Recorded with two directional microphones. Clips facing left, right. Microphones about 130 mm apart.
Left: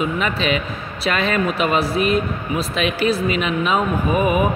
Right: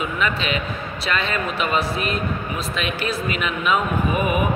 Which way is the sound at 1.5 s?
35° left (ahead or behind).